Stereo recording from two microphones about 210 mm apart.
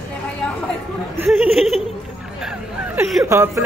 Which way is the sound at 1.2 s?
Centre (ahead or behind).